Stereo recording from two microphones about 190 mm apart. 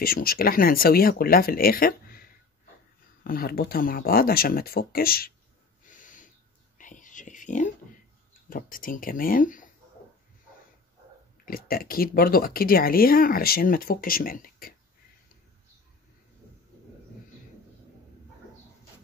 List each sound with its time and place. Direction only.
0.0 s speech: 50° left (ahead or behind)
3.3 s speech: 50° left (ahead or behind)
5.9 s a sound: 45° left (ahead or behind)
6.8 s whispering: 45° left (ahead or behind)
8.3 s speech: 45° left (ahead or behind)
11.4 s speech: 50° left (ahead or behind)